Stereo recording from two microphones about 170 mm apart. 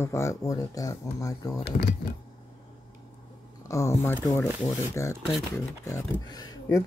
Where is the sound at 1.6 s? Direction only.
70° left (ahead or behind).